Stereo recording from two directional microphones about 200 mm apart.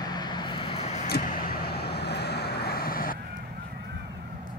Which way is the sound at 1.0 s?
50° left (ahead or behind).